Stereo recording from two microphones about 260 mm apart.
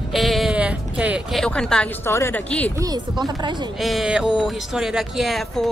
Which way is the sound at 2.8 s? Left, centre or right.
Centre.